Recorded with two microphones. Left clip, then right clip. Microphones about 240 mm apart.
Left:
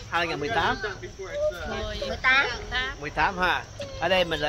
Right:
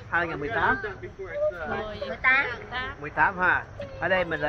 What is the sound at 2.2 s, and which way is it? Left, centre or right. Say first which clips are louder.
Speech: left 1 dB; centre.